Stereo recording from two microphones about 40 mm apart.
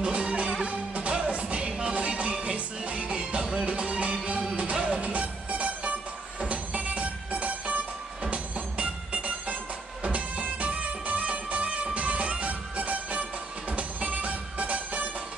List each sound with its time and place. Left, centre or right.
0.0 s music: right